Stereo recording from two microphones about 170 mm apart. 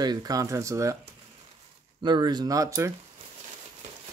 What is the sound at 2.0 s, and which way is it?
Speech, 25° right (ahead or behind).